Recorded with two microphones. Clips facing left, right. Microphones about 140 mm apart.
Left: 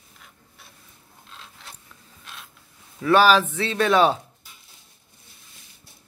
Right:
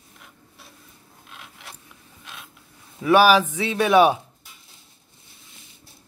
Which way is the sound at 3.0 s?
10° right (ahead or behind).